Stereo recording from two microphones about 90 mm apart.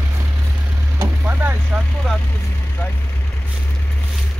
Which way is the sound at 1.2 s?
20° right (ahead or behind).